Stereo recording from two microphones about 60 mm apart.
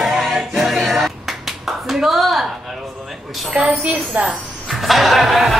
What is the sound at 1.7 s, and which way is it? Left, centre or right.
Clapping, centre.